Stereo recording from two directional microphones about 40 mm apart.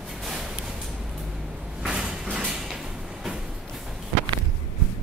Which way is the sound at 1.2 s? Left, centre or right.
Centre.